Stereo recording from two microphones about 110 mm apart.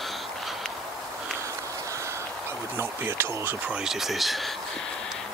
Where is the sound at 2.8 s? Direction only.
20° right (ahead or behind).